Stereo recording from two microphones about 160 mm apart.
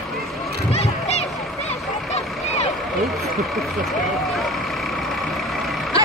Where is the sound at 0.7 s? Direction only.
40° left (ahead or behind).